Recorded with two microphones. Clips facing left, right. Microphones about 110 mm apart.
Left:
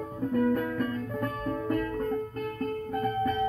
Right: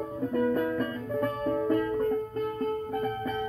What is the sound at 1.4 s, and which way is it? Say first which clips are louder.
Music: right 3 dB; 25° right (ahead or behind).